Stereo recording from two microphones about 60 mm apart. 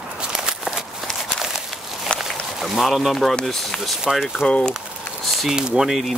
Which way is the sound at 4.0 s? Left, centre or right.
Centre.